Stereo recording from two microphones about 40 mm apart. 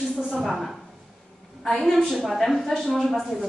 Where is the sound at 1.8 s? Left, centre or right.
Centre.